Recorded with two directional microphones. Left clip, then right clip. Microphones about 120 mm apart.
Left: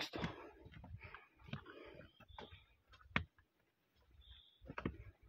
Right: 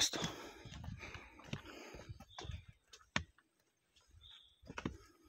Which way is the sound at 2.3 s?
90° right.